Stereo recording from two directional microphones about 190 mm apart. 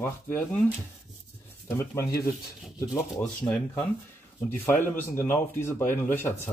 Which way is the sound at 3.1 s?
5° left (ahead or behind).